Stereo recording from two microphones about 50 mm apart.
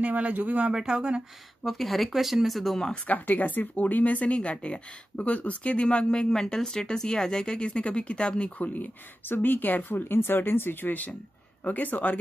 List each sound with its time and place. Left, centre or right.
0.0 s speech: right
1.6 s speech: centre
3.1 s a woman's voice: left